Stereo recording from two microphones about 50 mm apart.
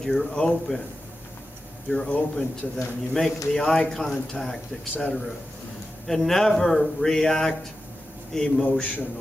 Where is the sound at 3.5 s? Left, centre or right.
Centre.